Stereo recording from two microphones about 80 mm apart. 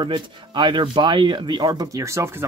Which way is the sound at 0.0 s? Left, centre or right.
Right.